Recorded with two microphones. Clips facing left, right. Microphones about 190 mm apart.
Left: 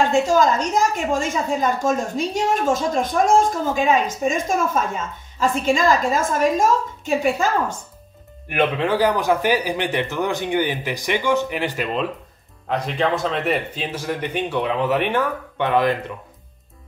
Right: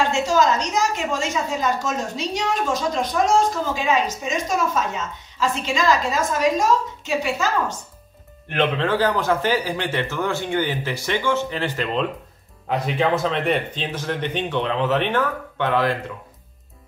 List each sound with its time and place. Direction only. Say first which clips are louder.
0.3 s a woman's voice: left 2 dB; 50° left (ahead or behind)
8.5 s a man's voice: left 1 dB; 10° left (ahead or behind)